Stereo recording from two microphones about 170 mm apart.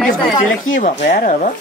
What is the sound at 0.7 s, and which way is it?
Speech, 45° left (ahead or behind).